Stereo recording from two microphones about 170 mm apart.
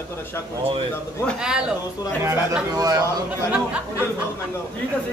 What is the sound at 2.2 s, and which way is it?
Snicker, 10° right (ahead or behind).